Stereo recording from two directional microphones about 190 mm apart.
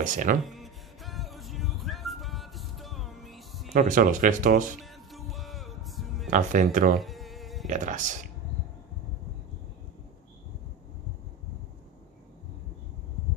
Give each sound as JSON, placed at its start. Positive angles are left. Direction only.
{"t": 0.0, "sound": "speech", "side_deg": -40}
{"t": 0.5, "sound": "music", "side_deg": 0}
{"t": 3.7, "sound": "speech", "side_deg": -45}
{"t": 4.8, "sound": "music", "side_deg": 0}
{"t": 6.3, "sound": "speech", "side_deg": -40}
{"t": 7.0, "sound": "insect", "side_deg": 0}
{"t": 7.6, "sound": "speech", "side_deg": -40}